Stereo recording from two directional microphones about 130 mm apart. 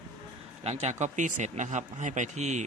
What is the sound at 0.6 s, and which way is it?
Speech, 60° right (ahead or behind).